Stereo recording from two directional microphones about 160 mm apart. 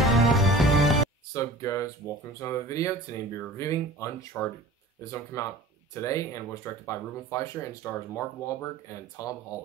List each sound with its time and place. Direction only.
0.0 s music: centre (ahead or behind)
1.3 s speech: 20° left (ahead or behind)